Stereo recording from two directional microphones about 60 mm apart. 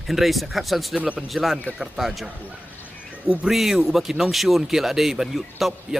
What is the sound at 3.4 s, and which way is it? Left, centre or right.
Speech, centre.